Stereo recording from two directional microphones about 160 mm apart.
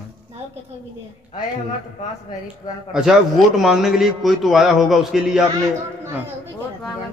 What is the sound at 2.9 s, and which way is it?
A man's voice, 5° right (ahead or behind).